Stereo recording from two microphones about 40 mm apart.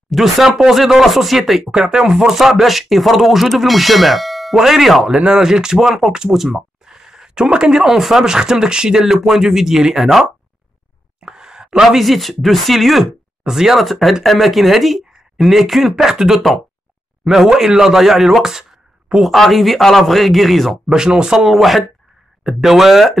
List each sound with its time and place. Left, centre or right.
0.1 s speech: centre
1.7 s speech: centre
2.3 s speech: centre
11.1 s a sound: centre
12.0 s speech: centre
19.3 s speech: centre
20.9 s speech: centre
21.5 s speech: centre